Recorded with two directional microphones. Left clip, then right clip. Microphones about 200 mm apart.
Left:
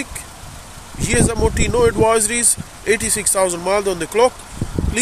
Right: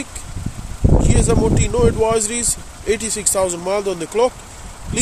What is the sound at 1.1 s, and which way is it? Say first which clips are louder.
Speech: left 3 dB; centre (ahead or behind).